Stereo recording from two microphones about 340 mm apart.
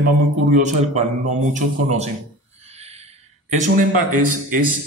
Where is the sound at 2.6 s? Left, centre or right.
Centre.